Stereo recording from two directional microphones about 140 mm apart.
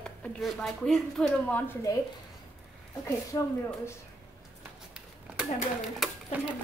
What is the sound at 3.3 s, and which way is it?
Speech, 20° left (ahead or behind).